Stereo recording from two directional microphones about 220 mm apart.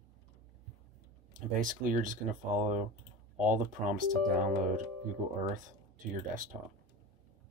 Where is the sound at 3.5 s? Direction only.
35° right (ahead or behind).